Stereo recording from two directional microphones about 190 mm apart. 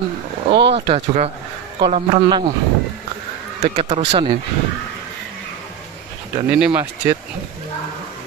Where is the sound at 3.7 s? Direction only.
35° right (ahead or behind).